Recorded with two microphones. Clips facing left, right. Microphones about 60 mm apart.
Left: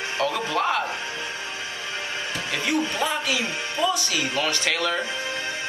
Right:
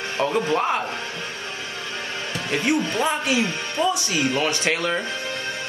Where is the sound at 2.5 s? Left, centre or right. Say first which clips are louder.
Right 4 dB; right.